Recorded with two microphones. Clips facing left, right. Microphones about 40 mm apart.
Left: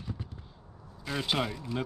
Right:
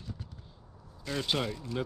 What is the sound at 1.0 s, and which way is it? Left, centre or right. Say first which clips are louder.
Speech: left 1 dB; centre.